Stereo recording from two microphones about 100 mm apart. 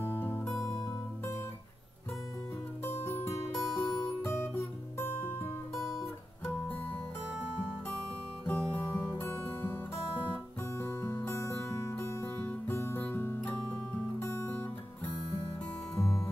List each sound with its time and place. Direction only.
0.0 s music: 20° left (ahead or behind)
2.8 s music: 25° left (ahead or behind)
8.5 s music: 15° left (ahead or behind)
15.9 s music: 5° left (ahead or behind)